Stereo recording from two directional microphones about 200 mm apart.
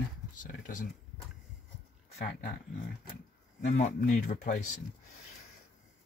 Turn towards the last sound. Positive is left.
turn(degrees=40)  # may be behind; listen again after turning